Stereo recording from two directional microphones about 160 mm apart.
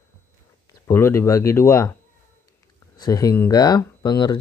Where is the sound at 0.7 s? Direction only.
15° left (ahead or behind).